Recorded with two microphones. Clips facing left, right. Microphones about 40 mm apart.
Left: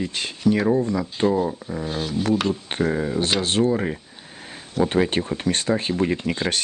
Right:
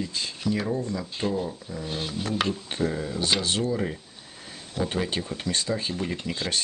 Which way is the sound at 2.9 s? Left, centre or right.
Left.